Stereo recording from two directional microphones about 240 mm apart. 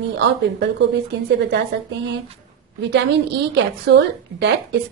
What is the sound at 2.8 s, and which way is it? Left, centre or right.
A woman's voice, right.